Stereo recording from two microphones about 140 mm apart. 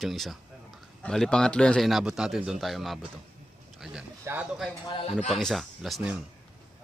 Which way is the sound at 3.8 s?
5° right (ahead or behind).